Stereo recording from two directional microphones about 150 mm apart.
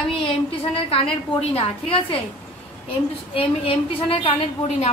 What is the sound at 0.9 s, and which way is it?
A woman's voice, 40° left (ahead or behind).